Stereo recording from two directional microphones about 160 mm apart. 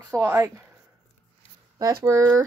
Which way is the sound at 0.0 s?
15° right (ahead or behind).